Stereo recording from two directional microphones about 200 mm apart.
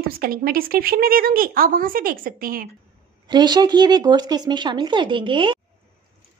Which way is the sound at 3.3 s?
20° right (ahead or behind).